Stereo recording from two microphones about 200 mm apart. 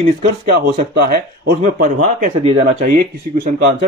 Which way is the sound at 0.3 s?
50° right (ahead or behind).